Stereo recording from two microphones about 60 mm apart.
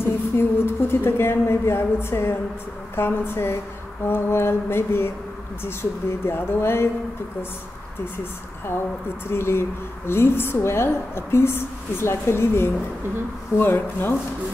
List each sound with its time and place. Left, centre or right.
0.0 s a woman's voice: left
9.3 s a woman's voice: left